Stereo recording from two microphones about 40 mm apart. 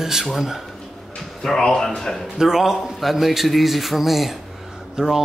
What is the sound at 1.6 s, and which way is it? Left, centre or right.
Speech, centre.